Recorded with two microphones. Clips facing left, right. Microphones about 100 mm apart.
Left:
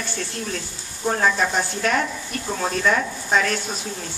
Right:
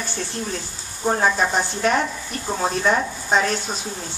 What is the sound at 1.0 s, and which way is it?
A woman's voice, 25° right (ahead or behind).